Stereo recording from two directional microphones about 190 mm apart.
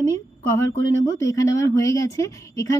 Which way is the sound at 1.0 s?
15° left (ahead or behind).